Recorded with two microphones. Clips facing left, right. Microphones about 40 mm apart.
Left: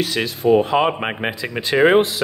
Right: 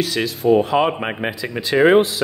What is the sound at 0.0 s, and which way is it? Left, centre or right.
Speech, left.